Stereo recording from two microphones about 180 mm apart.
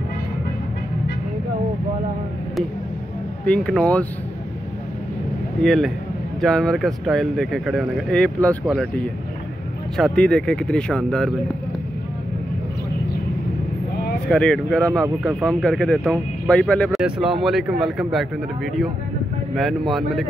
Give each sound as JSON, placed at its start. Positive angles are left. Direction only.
{"t": 3.4, "sound": "speech", "side_deg": 5}
{"t": 5.6, "sound": "speech", "side_deg": 0}
{"t": 14.2, "sound": "speech", "side_deg": 5}